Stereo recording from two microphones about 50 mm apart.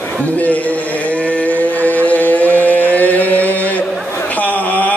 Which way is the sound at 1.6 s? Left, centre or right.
Left.